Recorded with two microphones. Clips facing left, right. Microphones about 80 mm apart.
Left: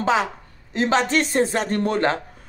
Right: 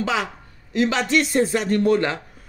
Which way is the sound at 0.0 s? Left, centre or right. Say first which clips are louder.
Left 3 dB; left.